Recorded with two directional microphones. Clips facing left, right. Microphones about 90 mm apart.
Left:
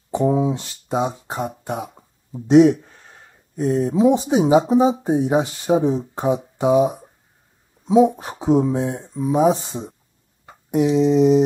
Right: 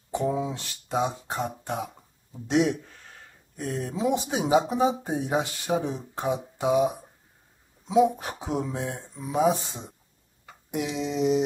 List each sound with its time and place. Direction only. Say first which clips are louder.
0.1 s speech: left 8 dB; 30° left (ahead or behind)
1.4 s cough: left 5 dB; 10° left (ahead or behind)
2.3 s speech: left 11 dB; 35° left (ahead or behind)
8.2 s speech: left 12 dB; 25° left (ahead or behind)
10.4 s a sound: left 12 dB; 35° left (ahead or behind)